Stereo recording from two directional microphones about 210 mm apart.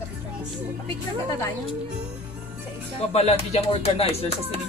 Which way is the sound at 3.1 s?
30° left (ahead or behind).